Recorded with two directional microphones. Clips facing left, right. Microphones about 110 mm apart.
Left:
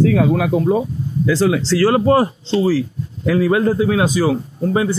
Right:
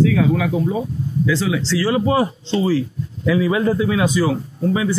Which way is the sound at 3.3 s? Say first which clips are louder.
Left 2 dB; 50° left (ahead or behind).